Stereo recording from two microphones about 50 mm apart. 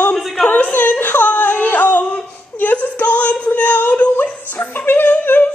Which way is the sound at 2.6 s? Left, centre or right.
Left.